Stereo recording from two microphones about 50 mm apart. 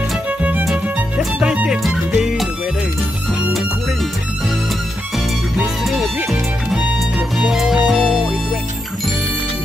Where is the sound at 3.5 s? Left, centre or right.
Centre.